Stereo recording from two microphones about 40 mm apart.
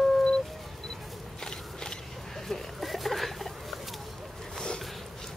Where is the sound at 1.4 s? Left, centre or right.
Centre.